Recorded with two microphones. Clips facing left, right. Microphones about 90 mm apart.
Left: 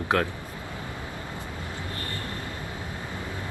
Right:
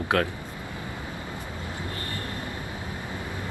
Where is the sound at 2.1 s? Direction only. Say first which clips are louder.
Right 1 dB; 20° right (ahead or behind).